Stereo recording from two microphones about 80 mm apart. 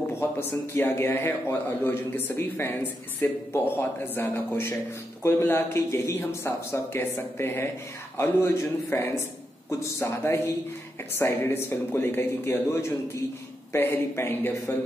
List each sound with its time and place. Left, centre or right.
0.1 s a man's voice: left